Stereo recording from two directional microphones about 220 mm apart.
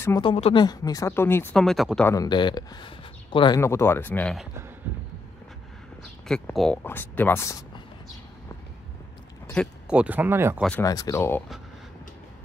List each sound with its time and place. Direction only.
0.0 s speech: 20° left (ahead or behind); by 2.0 s centre (ahead or behind)
2.0 s speech: 20° left (ahead or behind)
6.2 s speech: 5° left (ahead or behind)
9.5 s a sound: 5° left (ahead or behind)
9.9 s speech: 5° right (ahead or behind)
10.8 s speech: 15° left (ahead or behind)